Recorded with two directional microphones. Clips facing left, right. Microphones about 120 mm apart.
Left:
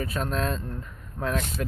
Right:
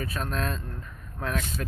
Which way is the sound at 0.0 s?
25° left (ahead or behind).